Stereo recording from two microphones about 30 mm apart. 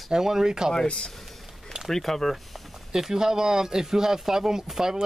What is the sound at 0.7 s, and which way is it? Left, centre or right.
Speech, left.